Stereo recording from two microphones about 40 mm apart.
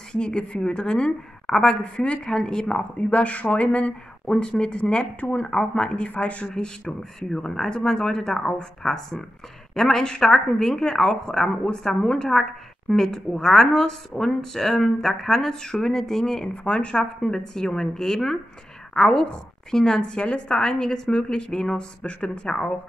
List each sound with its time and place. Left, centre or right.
0.1 s a woman's voice: left
2.0 s a woman's voice: left
4.3 s a woman's voice: left
5.5 s speech: centre
5.9 s speech: left
6.4 s speech: centre
16.6 s a woman's voice: left
20.0 s a woman's voice: left